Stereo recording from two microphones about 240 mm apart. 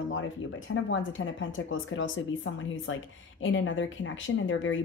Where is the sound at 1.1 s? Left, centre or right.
Left.